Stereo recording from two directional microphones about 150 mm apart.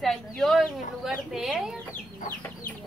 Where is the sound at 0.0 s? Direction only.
Centre (ahead or behind).